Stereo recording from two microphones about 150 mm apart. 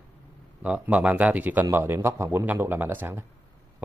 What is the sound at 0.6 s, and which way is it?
Speech, 10° right (ahead or behind).